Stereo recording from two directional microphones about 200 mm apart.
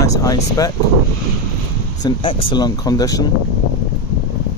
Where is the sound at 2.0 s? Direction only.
20° left (ahead or behind).